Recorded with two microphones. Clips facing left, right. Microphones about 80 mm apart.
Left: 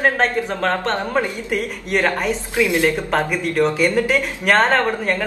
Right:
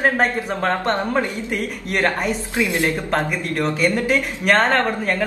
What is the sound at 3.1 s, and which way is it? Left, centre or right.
Speech, left.